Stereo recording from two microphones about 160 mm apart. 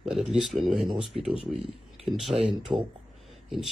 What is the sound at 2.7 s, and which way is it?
Speech, 25° right (ahead or behind).